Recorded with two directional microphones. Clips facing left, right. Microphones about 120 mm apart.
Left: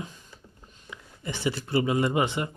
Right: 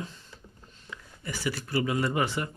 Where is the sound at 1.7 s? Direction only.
20° left (ahead or behind).